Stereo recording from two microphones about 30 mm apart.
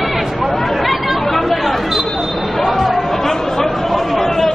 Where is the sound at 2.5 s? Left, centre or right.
Centre.